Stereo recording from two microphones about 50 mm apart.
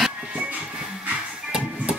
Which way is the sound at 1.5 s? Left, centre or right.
Centre.